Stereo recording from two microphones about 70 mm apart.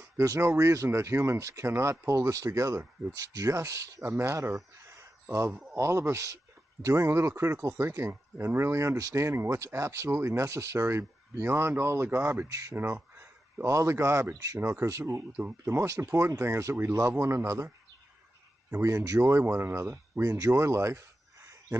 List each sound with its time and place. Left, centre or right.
0.4 s speech: right
5.8 s speech: right
12.4 s speech: right
12.7 s a sound: right
13.7 s speech: right
15.3 s speech: right
18.7 s speech: right
19.3 s speech: right
20.5 s a sound: right